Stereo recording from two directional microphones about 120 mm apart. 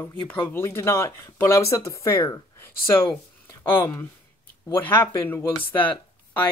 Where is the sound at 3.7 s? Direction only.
20° left (ahead or behind).